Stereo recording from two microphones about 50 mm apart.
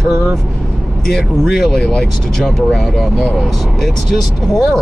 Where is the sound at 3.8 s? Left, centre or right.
Centre.